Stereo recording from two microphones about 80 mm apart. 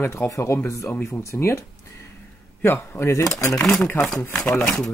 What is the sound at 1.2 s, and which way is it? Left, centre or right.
Speech, left.